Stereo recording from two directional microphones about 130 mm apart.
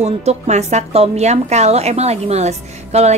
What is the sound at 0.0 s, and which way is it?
A woman's voice, 55° right (ahead or behind).